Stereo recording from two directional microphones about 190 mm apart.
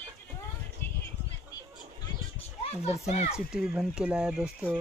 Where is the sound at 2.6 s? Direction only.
35° left (ahead or behind).